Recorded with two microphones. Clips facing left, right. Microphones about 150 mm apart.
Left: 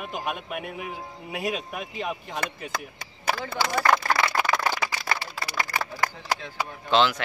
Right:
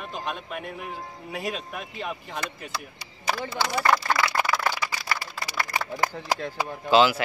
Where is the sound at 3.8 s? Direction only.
55° left (ahead or behind).